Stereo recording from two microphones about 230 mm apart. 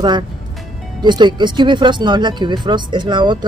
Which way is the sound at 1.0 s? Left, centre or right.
Centre.